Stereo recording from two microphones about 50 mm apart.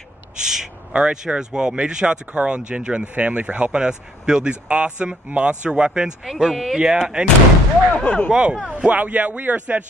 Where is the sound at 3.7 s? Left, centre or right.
Centre.